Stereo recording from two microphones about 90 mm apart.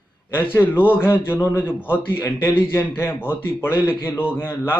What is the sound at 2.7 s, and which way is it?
A man's voice, 25° left (ahead or behind).